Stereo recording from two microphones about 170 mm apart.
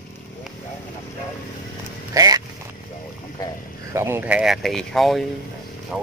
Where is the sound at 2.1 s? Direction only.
20° right (ahead or behind).